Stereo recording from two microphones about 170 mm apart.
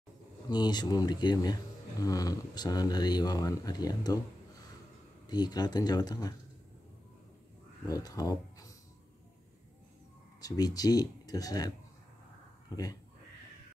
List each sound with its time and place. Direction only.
0.5 s speech: 25° left (ahead or behind)
7.8 s speech: 20° left (ahead or behind)
10.4 s speech: 20° left (ahead or behind)